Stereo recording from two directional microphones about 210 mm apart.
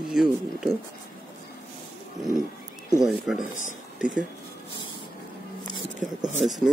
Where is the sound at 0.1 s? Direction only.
Centre (ahead or behind).